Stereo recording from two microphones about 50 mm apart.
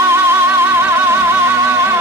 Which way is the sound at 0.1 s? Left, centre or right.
Right.